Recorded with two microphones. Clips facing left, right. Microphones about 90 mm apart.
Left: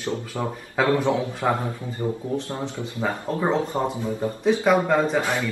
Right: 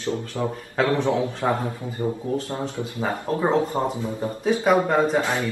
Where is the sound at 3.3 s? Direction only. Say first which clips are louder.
Right 3 dB; centre (ahead or behind).